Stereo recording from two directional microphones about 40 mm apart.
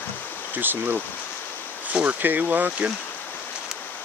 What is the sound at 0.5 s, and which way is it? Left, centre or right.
Speech, right.